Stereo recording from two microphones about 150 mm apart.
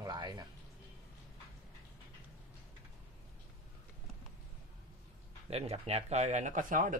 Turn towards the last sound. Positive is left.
turn(degrees=-60)  # may be behind; listen again after turning